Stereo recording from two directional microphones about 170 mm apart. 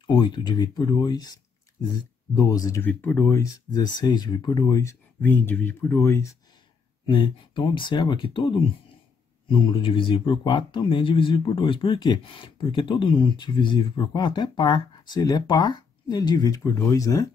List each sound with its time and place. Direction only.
0.0 s speech: 25° left (ahead or behind)
7.1 s speech: 30° left (ahead or behind)